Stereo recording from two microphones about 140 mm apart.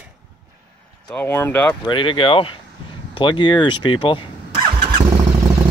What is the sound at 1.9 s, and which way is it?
Speech, 35° left (ahead or behind).